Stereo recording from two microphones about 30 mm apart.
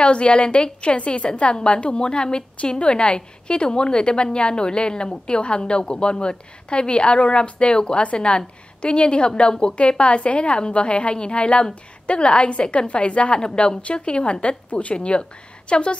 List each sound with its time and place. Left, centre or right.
0.0 s a woman's voice: left
8.0 s a woman's voice: left
14.7 s speech: left
15.0 s a woman's voice: left